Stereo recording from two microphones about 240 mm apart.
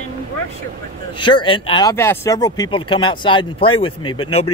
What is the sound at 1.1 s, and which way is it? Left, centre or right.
Speech, centre.